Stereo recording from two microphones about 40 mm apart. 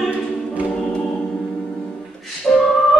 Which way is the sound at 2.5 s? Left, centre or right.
Left.